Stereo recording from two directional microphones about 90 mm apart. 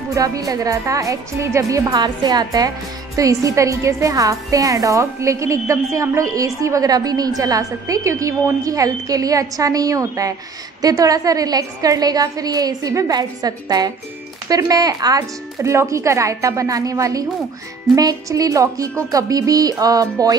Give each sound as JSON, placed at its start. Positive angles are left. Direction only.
{"t": 0.1, "sound": "a woman's voice", "side_deg": -40}
{"t": 2.0, "sound": "a woman's voice", "side_deg": -50}